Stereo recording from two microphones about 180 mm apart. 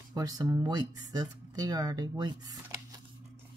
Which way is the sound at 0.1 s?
20° right (ahead or behind).